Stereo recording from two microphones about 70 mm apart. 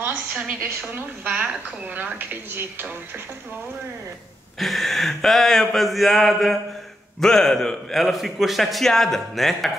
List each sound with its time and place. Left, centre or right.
0.0 s a sound: right
0.7 s a woman's voice: right
4.6 s a man's voice: centre